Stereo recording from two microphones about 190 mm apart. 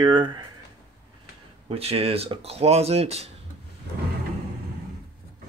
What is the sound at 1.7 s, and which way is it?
Speech, 30° right (ahead or behind).